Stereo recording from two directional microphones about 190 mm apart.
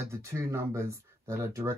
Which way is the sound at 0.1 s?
15° right (ahead or behind).